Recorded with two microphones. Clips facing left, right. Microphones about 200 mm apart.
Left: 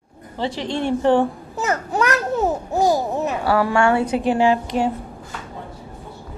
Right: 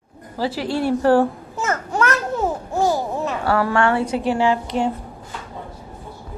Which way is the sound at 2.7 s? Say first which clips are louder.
Left 1 dB; 15° left (ahead or behind).